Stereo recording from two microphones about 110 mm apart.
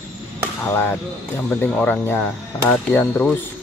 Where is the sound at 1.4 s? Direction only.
10° left (ahead or behind).